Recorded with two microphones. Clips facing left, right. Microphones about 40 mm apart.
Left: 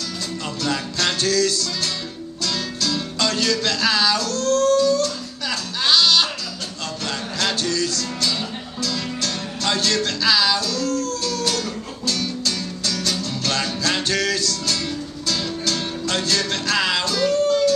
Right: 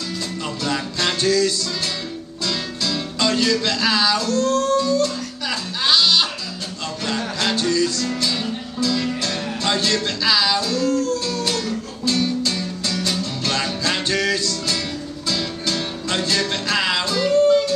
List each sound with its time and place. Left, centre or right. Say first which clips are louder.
0.7 s music: even; centre